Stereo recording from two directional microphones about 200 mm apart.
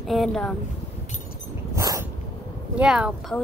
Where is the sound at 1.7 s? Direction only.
15° right (ahead or behind).